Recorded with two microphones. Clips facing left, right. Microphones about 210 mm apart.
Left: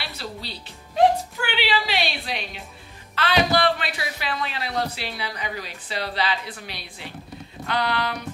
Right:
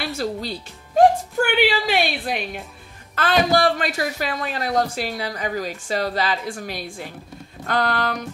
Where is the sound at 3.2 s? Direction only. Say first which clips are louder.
Right 3 dB; 45° right (ahead or behind).